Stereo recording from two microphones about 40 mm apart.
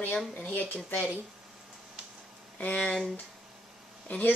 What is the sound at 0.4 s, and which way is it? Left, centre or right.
Speech, left.